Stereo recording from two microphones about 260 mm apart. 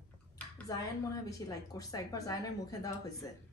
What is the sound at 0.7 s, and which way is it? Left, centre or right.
Speech, centre.